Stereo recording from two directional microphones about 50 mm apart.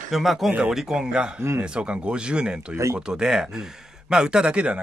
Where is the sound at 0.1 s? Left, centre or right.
Centre.